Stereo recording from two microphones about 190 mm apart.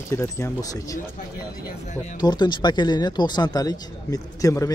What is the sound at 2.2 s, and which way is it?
Speech, 25° left (ahead or behind).